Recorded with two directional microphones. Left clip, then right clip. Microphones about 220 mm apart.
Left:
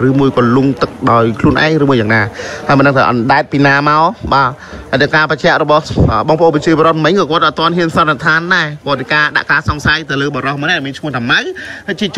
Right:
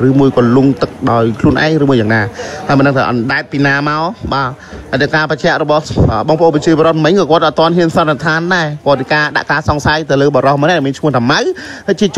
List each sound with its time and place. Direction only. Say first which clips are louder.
0.0 s a man's voice: right 1 dB; 20° right (ahead or behind)